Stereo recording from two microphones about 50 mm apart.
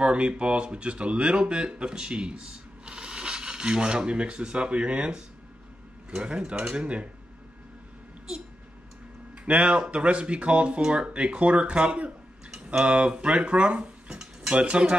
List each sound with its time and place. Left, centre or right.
0.0 s speech: right
9.4 s speech: right
13.4 s dishes: right
14.5 s speech: right